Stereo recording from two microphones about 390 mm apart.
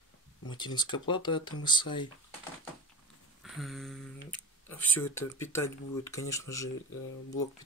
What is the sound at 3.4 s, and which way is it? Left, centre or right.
Speech, centre.